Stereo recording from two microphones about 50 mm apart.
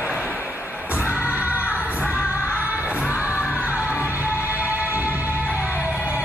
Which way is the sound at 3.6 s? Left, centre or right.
Right.